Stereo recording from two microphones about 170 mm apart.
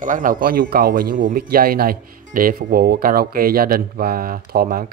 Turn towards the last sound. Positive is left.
turn(degrees=-60)  # may be behind; listen again after turning